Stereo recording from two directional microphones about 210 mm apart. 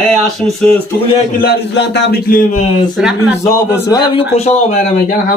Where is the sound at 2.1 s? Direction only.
45° left (ahead or behind).